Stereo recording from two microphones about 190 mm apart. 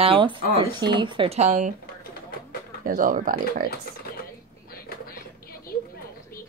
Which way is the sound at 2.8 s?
45° right (ahead or behind).